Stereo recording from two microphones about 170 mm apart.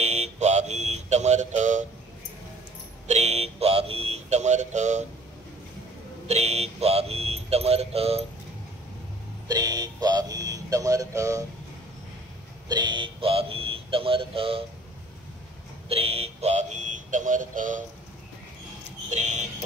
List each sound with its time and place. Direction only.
0.0 s music: 40° right (ahead or behind)
3.1 s speech: 40° right (ahead or behind)
6.2 s speech: 40° right (ahead or behind)
9.5 s speech: 25° right (ahead or behind)
12.6 s speech: 25° right (ahead or behind)
15.9 s speech: 35° right (ahead or behind)
19.0 s a sound: 40° right (ahead or behind)